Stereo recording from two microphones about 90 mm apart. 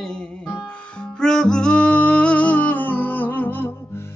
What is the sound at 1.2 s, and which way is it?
Music, 5° left (ahead or behind).